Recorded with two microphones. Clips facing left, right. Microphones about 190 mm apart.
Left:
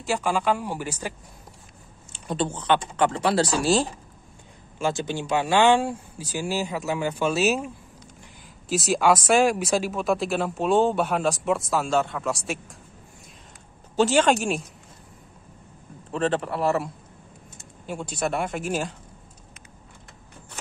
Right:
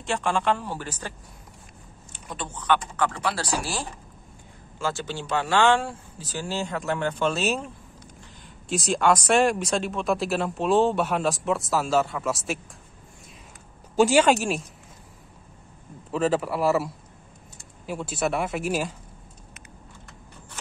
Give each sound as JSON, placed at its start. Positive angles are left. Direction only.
{"t": 0.0, "sound": "speech", "side_deg": 5}
{"t": 2.1, "sound": "speech", "side_deg": 30}
{"t": 13.9, "sound": "speech", "side_deg": -10}
{"t": 16.1, "sound": "speech", "side_deg": -5}